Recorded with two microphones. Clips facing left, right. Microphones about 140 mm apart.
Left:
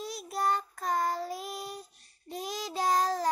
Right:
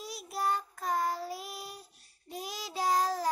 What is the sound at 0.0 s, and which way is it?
Child singing, 10° right (ahead or behind).